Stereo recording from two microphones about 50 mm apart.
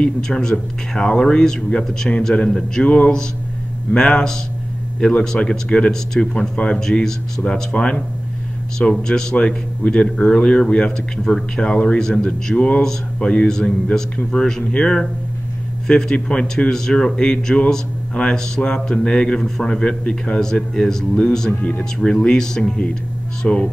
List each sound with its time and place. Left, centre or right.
0.0 s a man's voice: centre
20.3 s a man's voice: centre